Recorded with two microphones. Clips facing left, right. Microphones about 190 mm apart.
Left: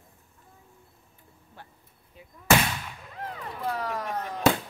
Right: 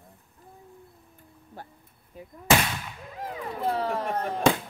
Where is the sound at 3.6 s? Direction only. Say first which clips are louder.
Right 4 dB; 30° right (ahead or behind).